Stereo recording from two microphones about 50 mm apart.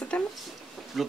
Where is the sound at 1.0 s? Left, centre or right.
Centre.